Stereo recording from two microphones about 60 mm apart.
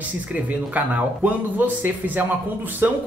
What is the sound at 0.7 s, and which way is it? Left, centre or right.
Speech, right.